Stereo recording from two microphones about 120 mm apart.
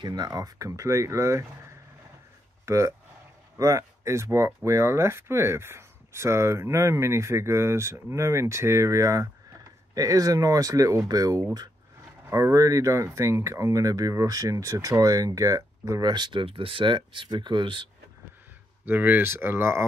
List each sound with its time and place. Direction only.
0.0 s speech: 35° right (ahead or behind)
18.9 s speech: 15° right (ahead or behind)